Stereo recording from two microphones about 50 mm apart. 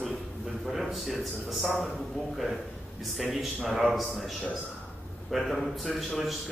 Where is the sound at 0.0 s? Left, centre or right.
Centre.